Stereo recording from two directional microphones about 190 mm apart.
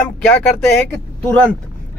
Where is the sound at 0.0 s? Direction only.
5° left (ahead or behind).